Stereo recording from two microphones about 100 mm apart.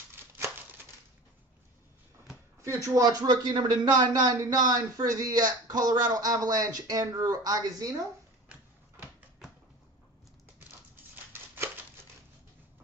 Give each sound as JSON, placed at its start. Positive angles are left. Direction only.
{"t": 2.6, "sound": "speech", "side_deg": -25}
{"t": 3.0, "sound": "speech", "side_deg": -45}
{"t": 11.5, "sound": "scissors", "side_deg": -25}